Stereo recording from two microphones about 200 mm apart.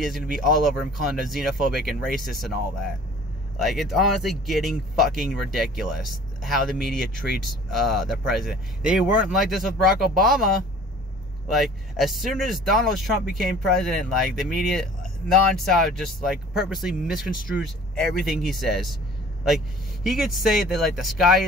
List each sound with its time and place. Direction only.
0.0 s speech: centre (ahead or behind)